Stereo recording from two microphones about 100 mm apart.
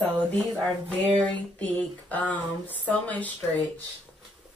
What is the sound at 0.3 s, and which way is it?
Speech, 10° left (ahead or behind).